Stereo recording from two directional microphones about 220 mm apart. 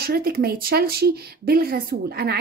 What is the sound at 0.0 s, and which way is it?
Speech, 45° right (ahead or behind).